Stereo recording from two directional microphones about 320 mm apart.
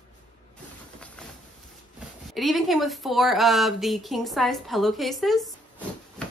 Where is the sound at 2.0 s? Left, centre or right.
Centre.